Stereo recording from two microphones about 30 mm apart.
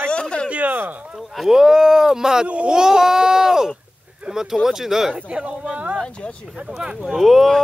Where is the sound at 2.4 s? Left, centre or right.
Right.